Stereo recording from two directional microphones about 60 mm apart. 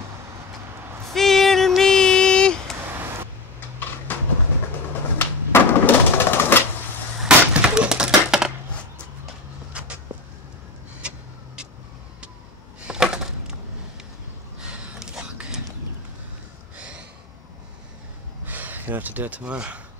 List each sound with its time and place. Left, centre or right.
1.0 s music: centre
1.8 s child singing: centre
4.1 s train: left
5.2 s music: left
7.2 s a sound: centre
9.7 s vehicle: centre
11.0 s vehicle: centre
12.8 s a sound: centre
14.6 s a sound: centre
16.7 s snort: centre
18.4 s gasp: right